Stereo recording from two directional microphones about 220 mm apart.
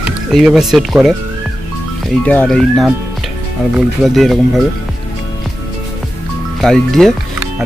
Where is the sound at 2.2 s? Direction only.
5° left (ahead or behind).